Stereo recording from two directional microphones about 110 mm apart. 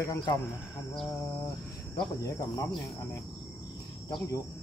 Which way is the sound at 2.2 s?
30° left (ahead or behind).